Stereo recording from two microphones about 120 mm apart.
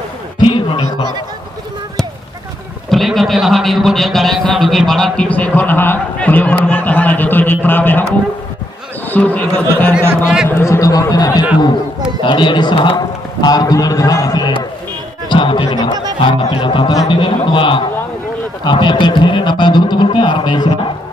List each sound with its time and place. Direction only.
0.5 s a sound: 45° left (ahead or behind)
2.9 s a man's voice: centre (ahead or behind); by 8.0 s 15° left (ahead or behind)
9.1 s a man's voice: 15° left (ahead or behind)
10.2 s a man's voice: 5° right (ahead or behind)
10.5 s a man's voice: 25° left (ahead or behind)